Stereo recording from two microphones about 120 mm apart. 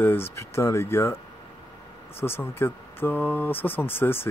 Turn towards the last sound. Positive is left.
turn(degrees=20)  # may be behind; listen again after turning